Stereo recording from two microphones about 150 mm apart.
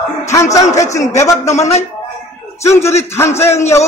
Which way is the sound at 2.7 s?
20° left (ahead or behind).